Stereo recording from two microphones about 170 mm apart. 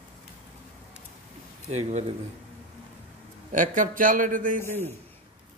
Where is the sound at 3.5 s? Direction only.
50° right (ahead or behind).